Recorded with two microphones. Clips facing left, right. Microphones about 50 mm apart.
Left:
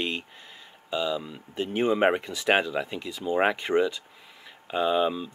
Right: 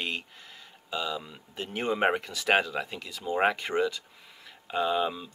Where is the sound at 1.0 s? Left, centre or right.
Centre.